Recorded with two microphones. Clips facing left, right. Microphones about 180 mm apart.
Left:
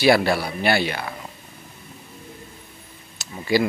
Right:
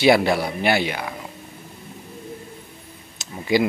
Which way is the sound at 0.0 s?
20° right (ahead or behind).